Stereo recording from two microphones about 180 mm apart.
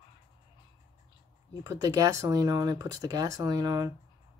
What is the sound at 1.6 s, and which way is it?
Speech, 20° right (ahead or behind).